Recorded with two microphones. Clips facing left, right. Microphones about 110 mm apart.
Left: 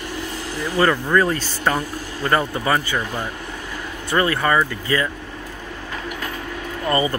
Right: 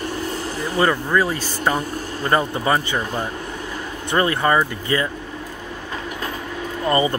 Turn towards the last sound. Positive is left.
turn(degrees=-25)  # may be behind; listen again after turning